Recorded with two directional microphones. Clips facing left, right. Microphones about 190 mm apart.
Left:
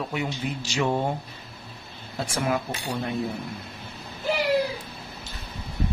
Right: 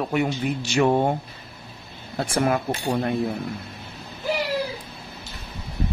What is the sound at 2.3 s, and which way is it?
Speech, 55° right (ahead or behind).